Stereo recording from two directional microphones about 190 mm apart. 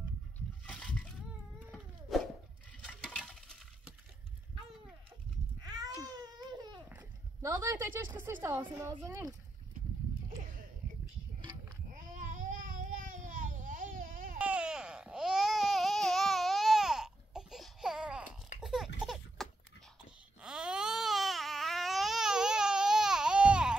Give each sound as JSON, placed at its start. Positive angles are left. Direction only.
{"t": 0.7, "sound": "splash", "side_deg": 5}
{"t": 1.7, "sound": "wail", "side_deg": 0}
{"t": 3.2, "sound": "coin", "side_deg": 0}
{"t": 5.6, "sound": "a sound", "side_deg": -20}
{"t": 7.4, "sound": "a woman's voice", "side_deg": -15}
{"t": 12.0, "sound": "a sound", "side_deg": -45}
{"t": 14.4, "sound": "babbling", "side_deg": -5}
{"t": 18.6, "sound": "laughter", "side_deg": -5}
{"t": 19.0, "sound": "baby laughter", "side_deg": 0}
{"t": 20.4, "sound": "baby cry", "side_deg": -5}